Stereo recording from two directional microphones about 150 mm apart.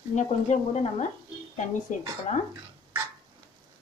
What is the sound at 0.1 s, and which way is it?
A woman's voice, 50° left (ahead or behind).